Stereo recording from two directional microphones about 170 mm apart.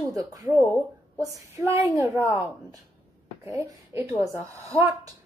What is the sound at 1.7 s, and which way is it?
Speech, 15° right (ahead or behind).